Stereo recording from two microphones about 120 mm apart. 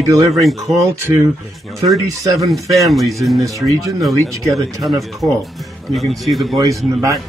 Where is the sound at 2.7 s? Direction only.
Centre (ahead or behind).